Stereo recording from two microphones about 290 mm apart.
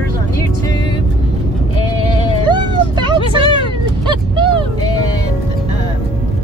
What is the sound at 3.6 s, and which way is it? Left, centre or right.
Cat, centre.